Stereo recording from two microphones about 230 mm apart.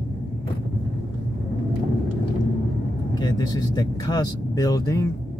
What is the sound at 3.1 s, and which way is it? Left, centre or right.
Speech, centre.